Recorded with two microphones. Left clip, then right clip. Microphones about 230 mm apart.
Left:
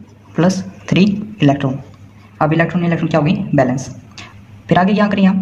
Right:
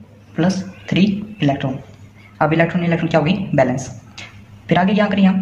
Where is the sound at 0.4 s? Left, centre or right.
Left.